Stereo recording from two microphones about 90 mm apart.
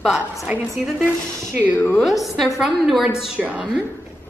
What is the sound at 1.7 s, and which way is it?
Speech, 25° left (ahead or behind).